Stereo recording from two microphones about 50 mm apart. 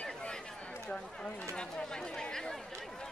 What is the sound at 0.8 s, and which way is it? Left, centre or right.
Run, centre.